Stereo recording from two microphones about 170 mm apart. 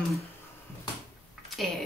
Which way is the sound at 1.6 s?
Centre (ahead or behind).